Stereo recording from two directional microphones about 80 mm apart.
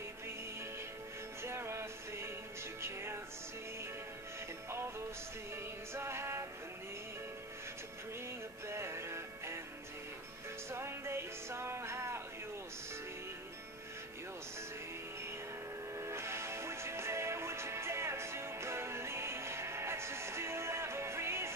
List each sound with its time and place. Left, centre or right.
1.4 s music: right
5.9 s music: right
8.6 s music: right
10.7 s music: right
16.0 s music: right